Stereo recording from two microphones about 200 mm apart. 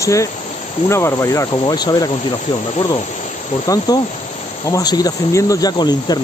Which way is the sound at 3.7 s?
15° left (ahead or behind).